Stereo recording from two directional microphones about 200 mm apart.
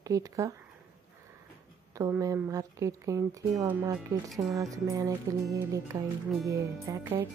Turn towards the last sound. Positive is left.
turn(degrees=-15)  # may be behind; listen again after turning